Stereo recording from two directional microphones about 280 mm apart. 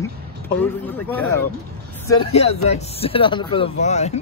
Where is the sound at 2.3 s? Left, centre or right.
Left.